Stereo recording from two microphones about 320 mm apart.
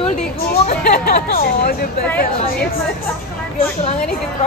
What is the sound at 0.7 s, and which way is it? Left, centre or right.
Speech, left.